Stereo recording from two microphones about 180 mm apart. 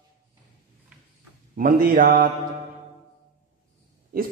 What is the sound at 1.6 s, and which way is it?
Speech, 50° right (ahead or behind).